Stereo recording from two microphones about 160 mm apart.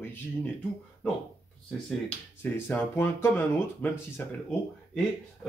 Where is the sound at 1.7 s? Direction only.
5° left (ahead or behind).